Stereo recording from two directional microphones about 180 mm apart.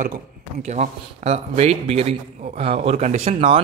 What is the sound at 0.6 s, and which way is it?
A man's voice, 40° right (ahead or behind).